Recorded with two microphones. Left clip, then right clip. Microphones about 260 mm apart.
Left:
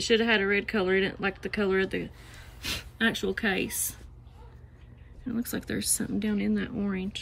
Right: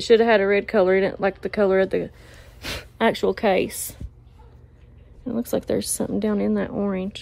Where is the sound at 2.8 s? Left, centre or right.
Centre.